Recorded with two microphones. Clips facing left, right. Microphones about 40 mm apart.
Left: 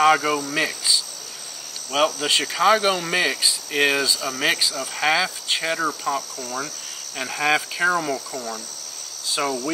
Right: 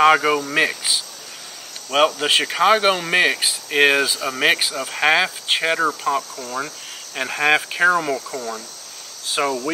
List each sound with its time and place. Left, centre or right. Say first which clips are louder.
0.0 s speech: right 3 dB; right
1.9 s speech: right 4 dB; right
5.9 s cricket: right 4 dB; centre
6.4 s speech: right 2 dB; right
9.4 s cricket: right 3 dB; centre